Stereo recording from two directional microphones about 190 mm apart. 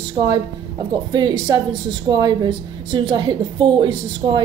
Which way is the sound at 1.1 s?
20° right (ahead or behind).